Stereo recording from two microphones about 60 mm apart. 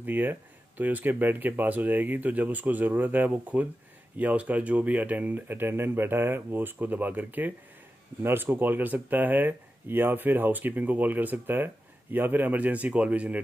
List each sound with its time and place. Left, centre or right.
0.0 s speech: right